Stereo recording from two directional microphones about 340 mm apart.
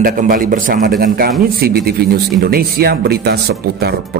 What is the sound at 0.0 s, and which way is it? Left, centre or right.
Speech, right.